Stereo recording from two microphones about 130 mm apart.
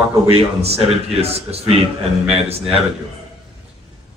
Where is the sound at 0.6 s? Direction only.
50° right (ahead or behind).